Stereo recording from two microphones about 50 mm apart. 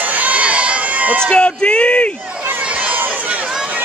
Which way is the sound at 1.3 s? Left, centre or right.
Left.